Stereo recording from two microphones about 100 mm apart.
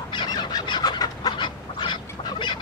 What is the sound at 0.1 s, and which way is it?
Fowl, 45° left (ahead or behind).